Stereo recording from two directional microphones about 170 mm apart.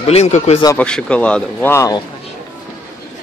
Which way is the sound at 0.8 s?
5° left (ahead or behind).